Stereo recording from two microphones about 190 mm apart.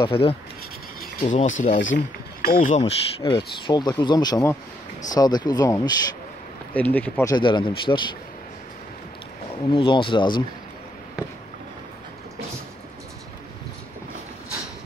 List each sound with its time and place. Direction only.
0.0 s speech: 30° left (ahead or behind)
1.2 s speech: 40° left (ahead or behind)
2.8 s speech: 25° left (ahead or behind)
6.7 s speech: 10° left (ahead or behind)
7.3 s speech: 25° left (ahead or behind)
9.7 s speech: 25° left (ahead or behind)